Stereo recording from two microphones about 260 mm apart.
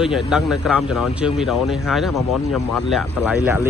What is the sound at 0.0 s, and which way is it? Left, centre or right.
Speech, centre.